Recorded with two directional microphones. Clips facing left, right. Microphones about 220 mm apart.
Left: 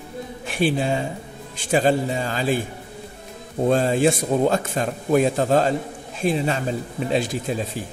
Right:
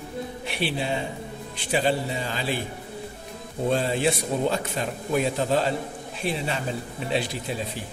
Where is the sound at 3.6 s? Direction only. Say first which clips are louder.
Left 5 dB; 45° left (ahead or behind).